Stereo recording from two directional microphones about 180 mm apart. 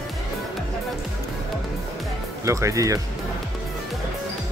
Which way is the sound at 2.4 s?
15° right (ahead or behind).